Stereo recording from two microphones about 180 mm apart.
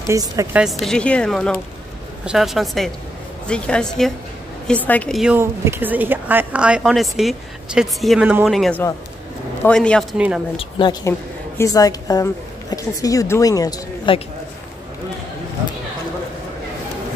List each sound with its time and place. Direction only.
0.1 s a woman's voice: 15° right (ahead or behind)
0.6 s a woman's voice: centre (ahead or behind)
5.4 s a woman's voice: 10° right (ahead or behind); by 10.2 s 5° left (ahead or behind)
10.6 s a woman's voice: 25° left (ahead or behind)